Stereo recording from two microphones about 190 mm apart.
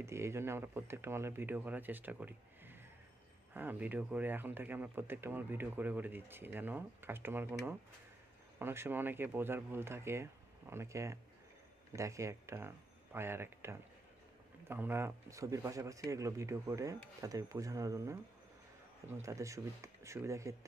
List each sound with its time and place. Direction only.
0.0 s speech: 15° right (ahead or behind)